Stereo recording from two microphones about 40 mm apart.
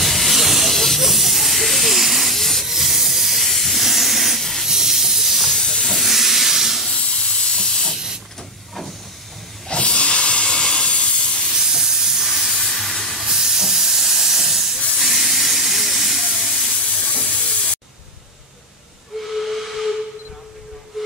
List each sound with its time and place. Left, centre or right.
0.0 s hiss: centre
5.5 s hiss: centre
5.9 s hiss: centre
6.9 s hiss: left
9.7 s hiss: left
11.5 s steam: centre
13.2 s hiss: centre
15.0 s steam: centre
16.7 s steam: left
19.2 s steam whistle: centre